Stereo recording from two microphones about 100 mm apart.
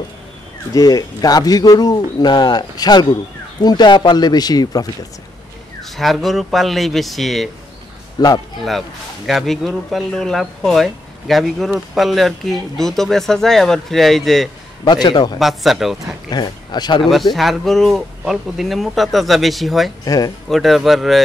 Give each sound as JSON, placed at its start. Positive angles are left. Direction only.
{"t": 0.7, "sound": "speech", "side_deg": 40}
{"t": 5.8, "sound": "speech", "side_deg": 0}
{"t": 8.2, "sound": "speech", "side_deg": 45}
{"t": 8.6, "sound": "speech", "side_deg": 0}
{"t": 14.9, "sound": "speech", "side_deg": 45}
{"t": 15.3, "sound": "speech", "side_deg": 0}
{"t": 16.3, "sound": "speech", "side_deg": 45}
{"t": 17.0, "sound": "speech", "side_deg": 0}
{"t": 20.1, "sound": "speech", "side_deg": 40}
{"t": 20.4, "sound": "speech", "side_deg": 0}